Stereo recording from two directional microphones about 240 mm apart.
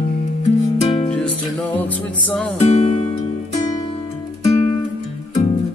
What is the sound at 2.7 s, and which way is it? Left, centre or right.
Music, left.